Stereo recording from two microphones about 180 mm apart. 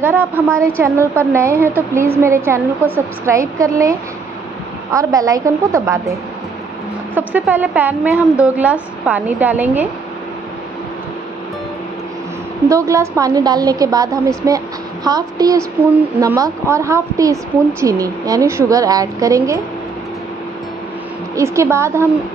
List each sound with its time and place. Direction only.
0.0 s a woman's voice: 10° right (ahead or behind)
4.9 s a woman's voice: 20° right (ahead or behind)
7.2 s a woman's voice: 10° right (ahead or behind)
12.6 s a woman's voice: 15° right (ahead or behind)
21.4 s a woman's voice: 15° right (ahead or behind)